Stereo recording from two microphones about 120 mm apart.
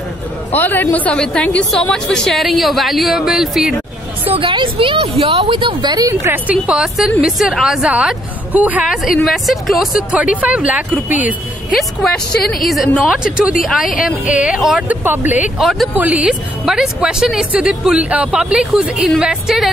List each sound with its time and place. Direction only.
0.6 s a man's voice: 15° left (ahead or behind); by 3.7 s 5° right (ahead or behind)
4.3 s a woman's voice: 45° right (ahead or behind); by 6.3 s 30° right (ahead or behind)
6.3 s a woman's voice: 10° right (ahead or behind)
9.0 s a woman's voice: centre (ahead or behind)
11.7 s a woman's voice: 5° left (ahead or behind)
13.0 s a woman's voice: 5° right (ahead or behind)
15.6 s a woman's voice: centre (ahead or behind)
15.9 s a woman's voice: 10° right (ahead or behind)